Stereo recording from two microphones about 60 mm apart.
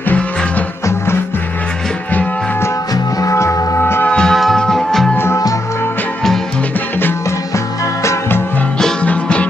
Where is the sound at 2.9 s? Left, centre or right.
Left.